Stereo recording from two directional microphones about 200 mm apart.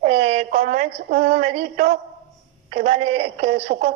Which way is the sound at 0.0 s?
30° right (ahead or behind).